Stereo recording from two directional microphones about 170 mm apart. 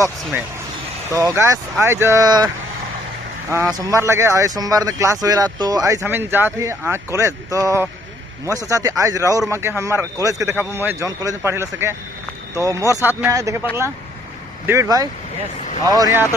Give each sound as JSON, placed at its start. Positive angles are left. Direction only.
{"t": 1.1, "sound": "speech", "side_deg": -15}
{"t": 14.7, "sound": "speech", "side_deg": -20}